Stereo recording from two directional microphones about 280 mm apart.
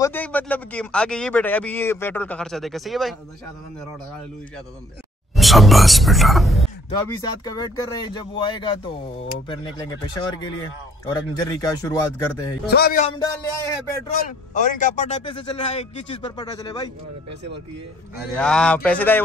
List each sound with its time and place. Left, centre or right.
0.0 s speech: centre
5.3 s a sound: centre
7.0 s speech: centre
12.6 s a man's voice: left
13.2 s speech: centre
14.5 s a man's voice: left
18.3 s speech: centre